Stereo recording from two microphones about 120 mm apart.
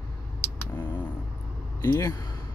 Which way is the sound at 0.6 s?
15° left (ahead or behind).